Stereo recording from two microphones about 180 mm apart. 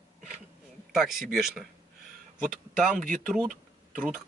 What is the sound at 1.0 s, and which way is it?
Speech, centre (ahead or behind).